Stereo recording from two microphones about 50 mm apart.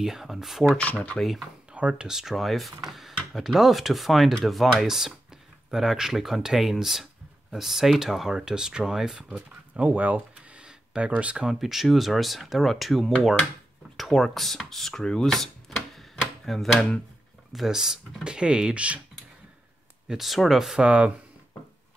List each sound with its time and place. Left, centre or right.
0.0 s speech: centre
0.7 s speech: left
1.7 s a sound: right
2.0 s speech: centre
9.8 s a sound: right
11.0 s speech: right
11.4 s speech: centre
16.0 s a sound: centre
17.5 s speech: centre; by 18.9 s right
20.2 s speech: centre
20.8 s speech: right